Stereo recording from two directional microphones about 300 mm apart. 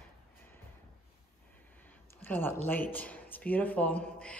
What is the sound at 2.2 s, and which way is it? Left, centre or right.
A woman's voice, centre.